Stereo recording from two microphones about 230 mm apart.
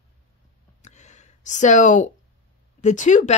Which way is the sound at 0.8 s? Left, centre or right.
Left.